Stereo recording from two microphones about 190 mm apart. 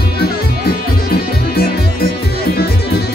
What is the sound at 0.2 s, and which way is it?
Music, 55° left (ahead or behind).